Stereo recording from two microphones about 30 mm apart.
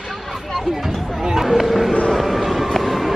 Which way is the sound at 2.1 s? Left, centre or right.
Centre.